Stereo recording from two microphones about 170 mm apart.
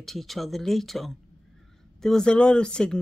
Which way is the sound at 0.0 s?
Centre (ahead or behind).